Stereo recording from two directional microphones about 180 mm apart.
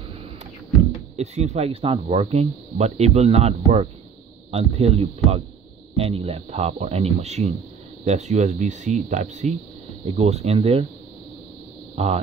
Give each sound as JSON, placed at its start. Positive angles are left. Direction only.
{"t": 1.1, "sound": "speech", "side_deg": -40}
{"t": 11.9, "sound": "speech", "side_deg": -35}